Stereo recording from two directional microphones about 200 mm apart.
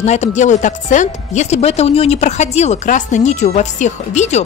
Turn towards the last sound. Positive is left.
turn(degrees=35)  # may be behind; listen again after turning